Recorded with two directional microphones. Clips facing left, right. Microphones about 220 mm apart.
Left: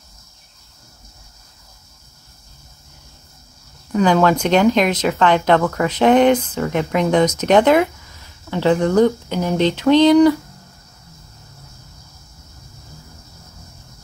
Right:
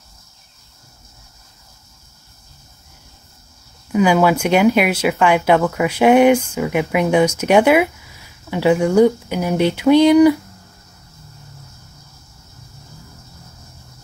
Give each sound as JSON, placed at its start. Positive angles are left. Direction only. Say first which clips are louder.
{"t": 3.9, "sound": "speech", "louder": "right 1 dB", "side_deg": -10}